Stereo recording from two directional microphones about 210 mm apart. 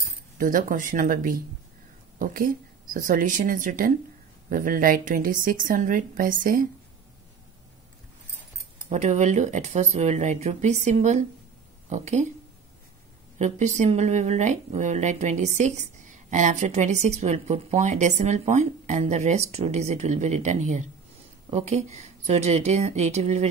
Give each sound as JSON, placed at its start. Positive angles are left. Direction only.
{"t": 0.4, "sound": "speech", "side_deg": -40}
{"t": 8.8, "sound": "speech", "side_deg": -35}
{"t": 13.4, "sound": "speech", "side_deg": -35}